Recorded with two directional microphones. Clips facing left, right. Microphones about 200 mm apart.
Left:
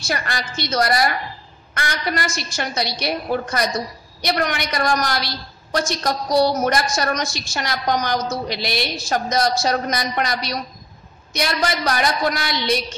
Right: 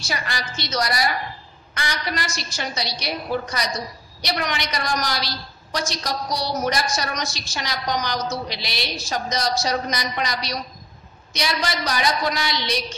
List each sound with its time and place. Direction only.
0.0 s a woman's voice: 55° left (ahead or behind)